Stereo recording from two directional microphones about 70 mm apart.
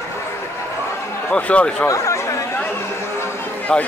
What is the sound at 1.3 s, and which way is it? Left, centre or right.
Speech, centre.